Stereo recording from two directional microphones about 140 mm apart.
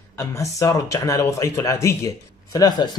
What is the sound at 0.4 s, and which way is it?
Speech, 20° left (ahead or behind).